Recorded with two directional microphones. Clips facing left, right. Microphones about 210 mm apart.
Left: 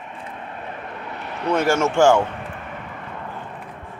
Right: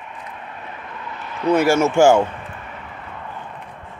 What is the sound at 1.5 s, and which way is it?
Speech, 10° right (ahead or behind).